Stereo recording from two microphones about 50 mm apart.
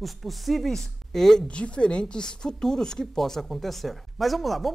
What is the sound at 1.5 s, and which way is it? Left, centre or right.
Speech, left.